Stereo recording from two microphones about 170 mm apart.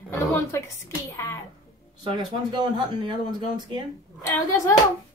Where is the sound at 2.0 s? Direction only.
25° right (ahead or behind).